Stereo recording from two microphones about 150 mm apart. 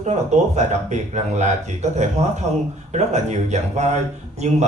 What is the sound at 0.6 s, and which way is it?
Speech, 50° right (ahead or behind).